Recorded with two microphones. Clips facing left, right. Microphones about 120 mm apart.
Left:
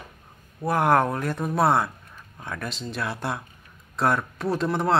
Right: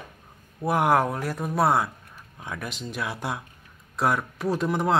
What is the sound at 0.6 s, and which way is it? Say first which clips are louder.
Speech: left 1 dB; 15° right (ahead or behind).